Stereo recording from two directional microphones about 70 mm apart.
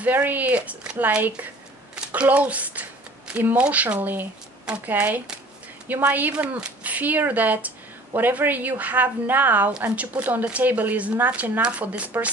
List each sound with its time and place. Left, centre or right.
0.0 s speech: right
9.7 s speech: centre